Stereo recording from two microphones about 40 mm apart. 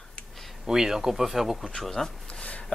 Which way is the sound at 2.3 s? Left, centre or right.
Left.